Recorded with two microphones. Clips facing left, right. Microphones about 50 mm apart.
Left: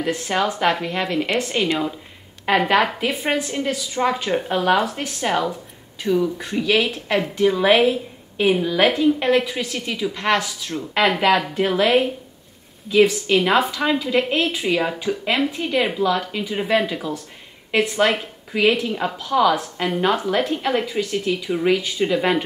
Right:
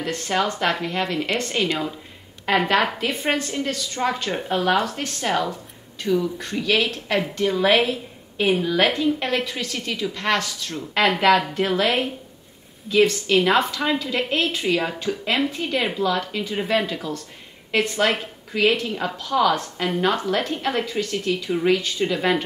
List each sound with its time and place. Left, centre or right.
0.0 s a woman's voice: centre